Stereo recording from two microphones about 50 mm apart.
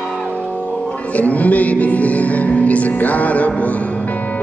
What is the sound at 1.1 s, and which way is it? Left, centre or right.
Music, left.